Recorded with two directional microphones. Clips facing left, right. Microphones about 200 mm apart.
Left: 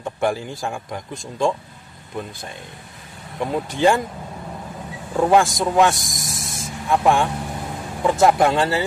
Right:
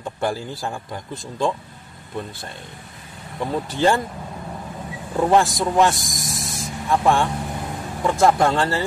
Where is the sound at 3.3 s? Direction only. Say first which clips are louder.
Left 1 dB; 15° left (ahead or behind).